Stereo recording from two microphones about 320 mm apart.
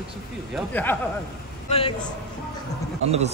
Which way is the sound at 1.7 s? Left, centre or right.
Centre.